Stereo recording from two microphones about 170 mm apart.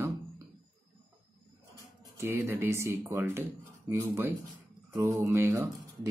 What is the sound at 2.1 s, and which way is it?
Speech, 15° right (ahead or behind).